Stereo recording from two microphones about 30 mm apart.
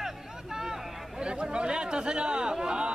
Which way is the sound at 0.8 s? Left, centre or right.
Centre.